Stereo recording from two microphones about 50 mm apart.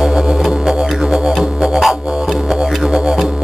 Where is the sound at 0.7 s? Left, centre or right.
Centre.